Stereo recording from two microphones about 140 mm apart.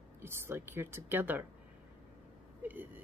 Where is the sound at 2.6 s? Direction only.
15° right (ahead or behind).